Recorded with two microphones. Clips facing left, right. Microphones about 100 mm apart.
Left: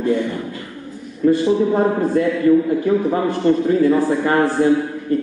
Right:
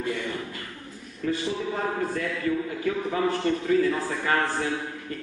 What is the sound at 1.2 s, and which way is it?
A man's voice, 30° left (ahead or behind).